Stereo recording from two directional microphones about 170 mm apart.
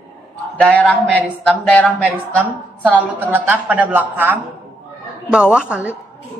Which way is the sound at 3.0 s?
10° right (ahead or behind).